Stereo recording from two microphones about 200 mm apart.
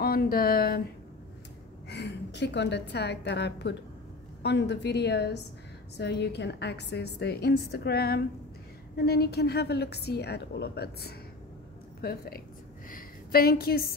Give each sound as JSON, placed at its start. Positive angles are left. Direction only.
{"t": 0.0, "sound": "speech", "side_deg": 50}
{"t": 1.9, "sound": "a woman's voice", "side_deg": 60}